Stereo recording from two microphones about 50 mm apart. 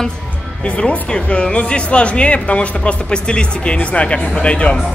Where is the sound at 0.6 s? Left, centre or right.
Left.